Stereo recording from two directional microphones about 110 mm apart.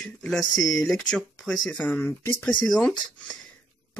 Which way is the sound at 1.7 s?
15° left (ahead or behind).